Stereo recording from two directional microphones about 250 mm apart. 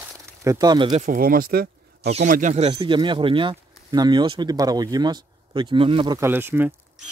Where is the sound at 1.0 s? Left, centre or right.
Right.